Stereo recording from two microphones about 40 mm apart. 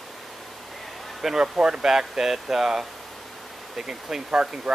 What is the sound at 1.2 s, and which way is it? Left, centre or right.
Speech, centre.